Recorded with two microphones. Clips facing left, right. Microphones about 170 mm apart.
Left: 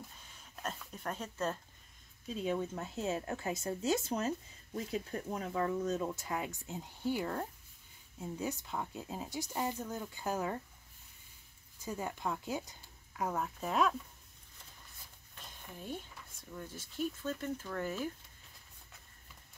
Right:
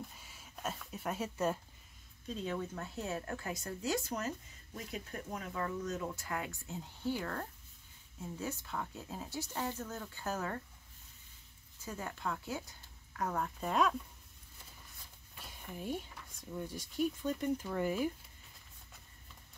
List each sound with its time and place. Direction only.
0.2 s a sound: 5° right (ahead or behind)
2.2 s speech: 10° left (ahead or behind)
5.3 s speech: 30° left (ahead or behind); by 10.6 s 15° left (ahead or behind)
11.8 s speech: 15° left (ahead or behind)
13.2 s speech: 5° left (ahead or behind)
15.4 s a sound: 10° right (ahead or behind)
16.5 s speech: 15° right (ahead or behind)